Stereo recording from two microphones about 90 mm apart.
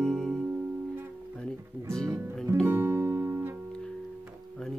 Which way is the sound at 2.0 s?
30° right (ahead or behind).